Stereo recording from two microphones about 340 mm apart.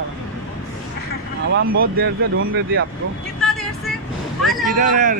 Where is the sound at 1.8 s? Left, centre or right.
Right.